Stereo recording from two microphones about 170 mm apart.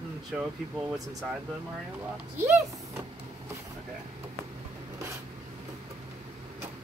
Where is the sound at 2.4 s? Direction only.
15° right (ahead or behind).